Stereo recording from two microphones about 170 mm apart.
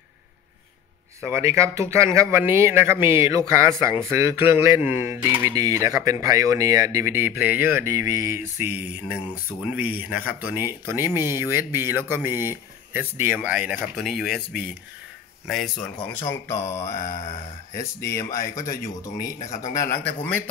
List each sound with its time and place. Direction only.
1.2 s speech: 15° right (ahead or behind); by 15.9 s centre (ahead or behind)
16.1 s speech: 15° left (ahead or behind)
16.5 s mantra: 40° left (ahead or behind)
16.9 s mantra: 55° left (ahead or behind)
18.3 s speech: 20° left (ahead or behind)